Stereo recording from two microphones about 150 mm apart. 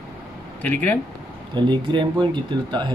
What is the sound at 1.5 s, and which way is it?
Speech, 30° right (ahead or behind).